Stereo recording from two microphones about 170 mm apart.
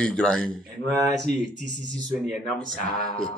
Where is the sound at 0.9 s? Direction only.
15° right (ahead or behind).